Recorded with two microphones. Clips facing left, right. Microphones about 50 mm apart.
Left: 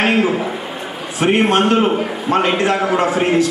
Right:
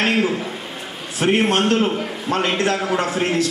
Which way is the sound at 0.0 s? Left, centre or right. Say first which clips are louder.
Left 4 dB; centre.